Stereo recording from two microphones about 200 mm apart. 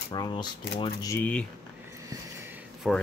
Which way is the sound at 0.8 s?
15° left (ahead or behind).